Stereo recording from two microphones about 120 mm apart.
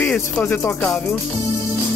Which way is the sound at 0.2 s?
20° left (ahead or behind).